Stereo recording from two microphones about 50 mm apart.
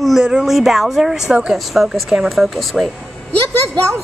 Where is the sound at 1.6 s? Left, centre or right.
Centre.